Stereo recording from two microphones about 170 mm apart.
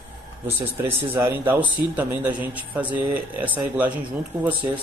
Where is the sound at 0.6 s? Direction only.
15° right (ahead or behind).